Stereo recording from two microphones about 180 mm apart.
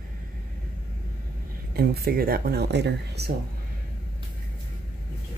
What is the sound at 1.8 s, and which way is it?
Speech, 55° right (ahead or behind).